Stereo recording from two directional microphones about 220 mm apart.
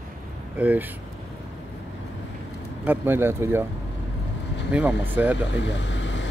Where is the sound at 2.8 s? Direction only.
10° right (ahead or behind).